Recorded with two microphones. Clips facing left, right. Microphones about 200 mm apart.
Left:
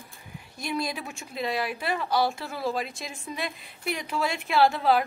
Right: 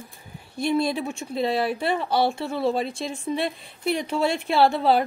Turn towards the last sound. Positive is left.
turn(degrees=-30)  # may be behind; listen again after turning